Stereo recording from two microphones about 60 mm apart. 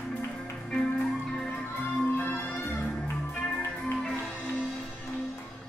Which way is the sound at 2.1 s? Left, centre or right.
Left.